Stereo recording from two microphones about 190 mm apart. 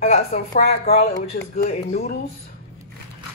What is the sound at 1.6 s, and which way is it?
Speech, 50° left (ahead or behind).